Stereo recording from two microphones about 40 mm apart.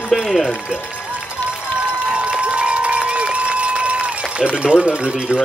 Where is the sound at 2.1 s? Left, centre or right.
Right.